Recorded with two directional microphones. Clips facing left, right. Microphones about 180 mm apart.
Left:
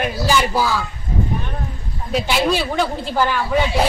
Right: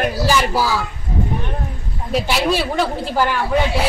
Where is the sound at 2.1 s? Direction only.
5° right (ahead or behind).